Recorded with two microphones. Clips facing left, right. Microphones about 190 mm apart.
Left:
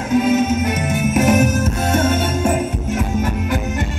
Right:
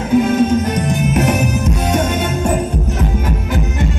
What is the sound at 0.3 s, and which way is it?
Music, 5° left (ahead or behind).